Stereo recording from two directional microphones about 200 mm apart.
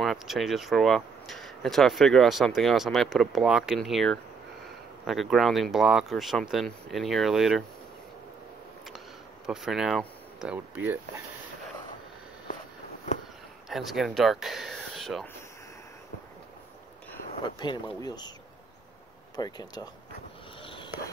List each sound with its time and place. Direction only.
0.0 s speech: centre (ahead or behind)
9.5 s speech: centre (ahead or behind)
13.7 s speech: centre (ahead or behind)
17.6 s speech: 20° left (ahead or behind)
19.3 s speech: 20° left (ahead or behind)
20.6 s a sound: 25° left (ahead or behind)